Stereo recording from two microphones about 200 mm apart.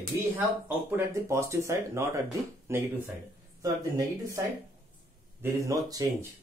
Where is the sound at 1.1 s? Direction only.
15° right (ahead or behind).